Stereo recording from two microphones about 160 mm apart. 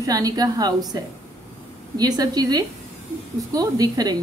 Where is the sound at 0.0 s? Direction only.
25° right (ahead or behind).